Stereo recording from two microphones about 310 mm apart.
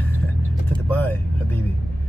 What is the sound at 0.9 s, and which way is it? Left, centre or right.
Speech, centre.